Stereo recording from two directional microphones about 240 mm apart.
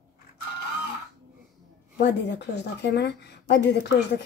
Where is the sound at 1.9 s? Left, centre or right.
Left.